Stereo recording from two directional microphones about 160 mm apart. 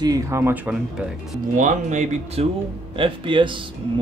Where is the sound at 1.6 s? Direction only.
50° right (ahead or behind).